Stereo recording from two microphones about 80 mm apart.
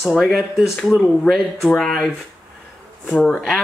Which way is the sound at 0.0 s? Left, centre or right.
Centre.